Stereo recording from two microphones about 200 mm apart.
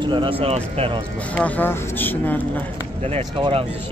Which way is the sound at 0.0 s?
25° right (ahead or behind).